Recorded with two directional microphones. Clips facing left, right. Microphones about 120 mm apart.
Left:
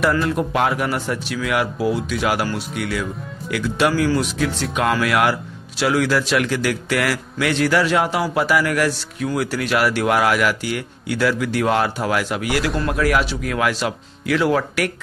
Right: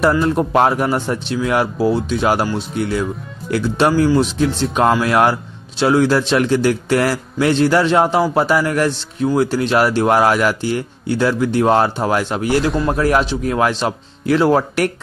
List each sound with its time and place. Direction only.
0.0 s a man's voice: 30° right (ahead or behind)